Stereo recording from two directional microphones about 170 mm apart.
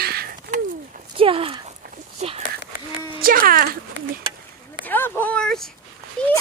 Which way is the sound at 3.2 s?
55° right (ahead or behind).